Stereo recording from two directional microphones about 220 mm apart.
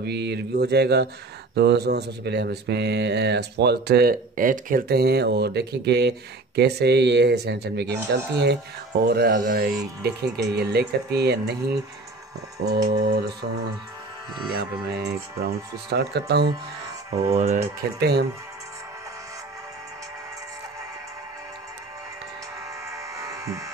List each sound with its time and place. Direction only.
0.0 s speech: 50° right (ahead or behind)
13.0 s speech: 45° right (ahead or behind)
14.9 s speech: 50° right (ahead or behind)
17.2 s speech: 30° right (ahead or behind)
17.9 s speech: 45° right (ahead or behind)
22.8 s a sound: 15° right (ahead or behind)